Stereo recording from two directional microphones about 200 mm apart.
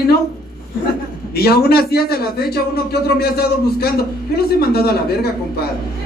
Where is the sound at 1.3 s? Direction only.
50° left (ahead or behind).